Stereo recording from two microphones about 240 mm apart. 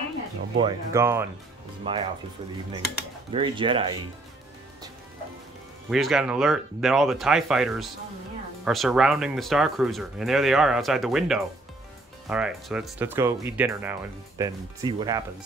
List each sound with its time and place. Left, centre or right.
0.6 s speech: centre
1.9 s speech: right
3.3 s speech: right
5.9 s speech: centre